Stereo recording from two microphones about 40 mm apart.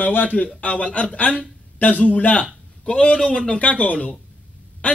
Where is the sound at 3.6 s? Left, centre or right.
Left.